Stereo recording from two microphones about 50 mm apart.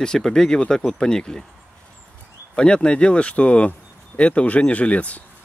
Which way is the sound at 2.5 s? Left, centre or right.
Centre.